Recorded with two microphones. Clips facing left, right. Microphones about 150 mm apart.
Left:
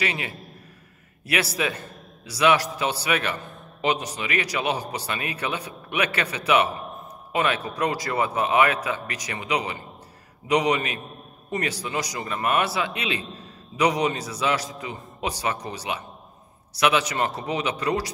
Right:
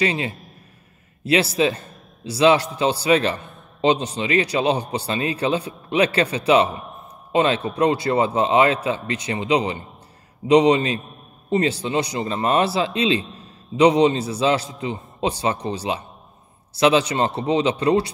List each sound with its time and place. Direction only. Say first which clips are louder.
0.0 s a man's voice: right 7 dB; 30° right (ahead or behind)